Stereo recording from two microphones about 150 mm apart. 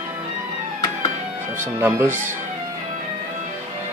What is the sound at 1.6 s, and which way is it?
Speech, 15° right (ahead or behind).